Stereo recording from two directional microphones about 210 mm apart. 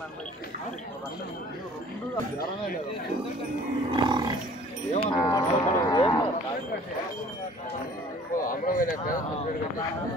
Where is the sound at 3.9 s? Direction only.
20° right (ahead or behind).